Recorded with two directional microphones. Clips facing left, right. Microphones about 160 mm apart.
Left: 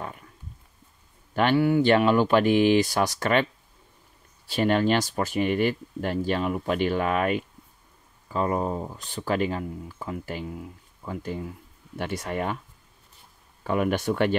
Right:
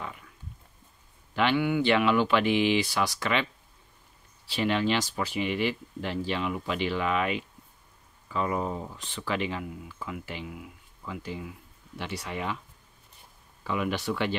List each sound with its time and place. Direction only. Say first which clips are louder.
1.3 s speech: left 4 dB; 45° left (ahead or behind)
4.5 s speech: left 4 dB; 45° left (ahead or behind)
13.7 s speech: left 5 dB; 50° left (ahead or behind)